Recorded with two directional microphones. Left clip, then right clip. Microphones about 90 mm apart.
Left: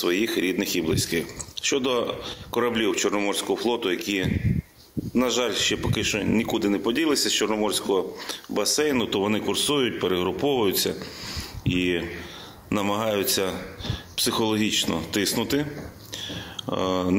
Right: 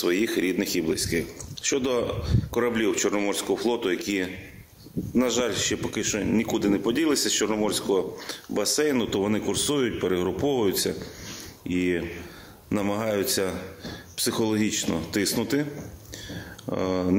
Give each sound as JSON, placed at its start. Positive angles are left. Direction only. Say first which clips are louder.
{"t": 0.0, "sound": "speech", "louder": "left 1 dB", "side_deg": -40}
{"t": 16.7, "sound": "speech", "louder": "left 1 dB", "side_deg": -40}